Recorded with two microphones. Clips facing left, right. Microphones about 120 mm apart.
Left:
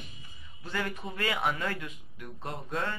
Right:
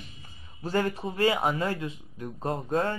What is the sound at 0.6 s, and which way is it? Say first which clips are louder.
Speech: right 7 dB; 40° right (ahead or behind).